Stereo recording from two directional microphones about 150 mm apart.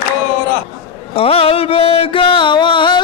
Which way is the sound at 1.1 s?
40° left (ahead or behind).